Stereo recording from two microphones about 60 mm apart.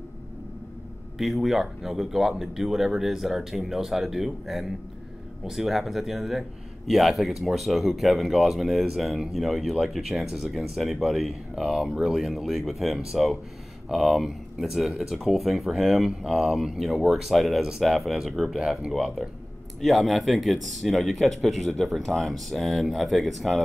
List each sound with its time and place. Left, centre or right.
1.1 s speech: centre